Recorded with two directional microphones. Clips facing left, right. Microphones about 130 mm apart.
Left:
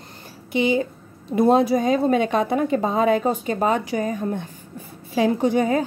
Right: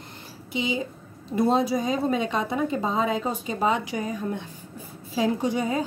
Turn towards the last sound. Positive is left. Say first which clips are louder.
# left 6 dB
turn(degrees=60)  # may be behind; listen again after turning